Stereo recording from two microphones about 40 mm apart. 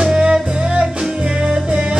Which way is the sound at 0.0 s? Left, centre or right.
Centre.